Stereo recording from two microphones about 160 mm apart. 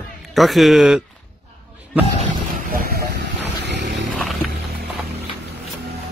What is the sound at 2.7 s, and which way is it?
Vehicle, 65° right (ahead or behind).